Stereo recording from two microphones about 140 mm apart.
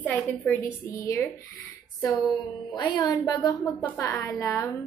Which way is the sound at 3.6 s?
10° left (ahead or behind).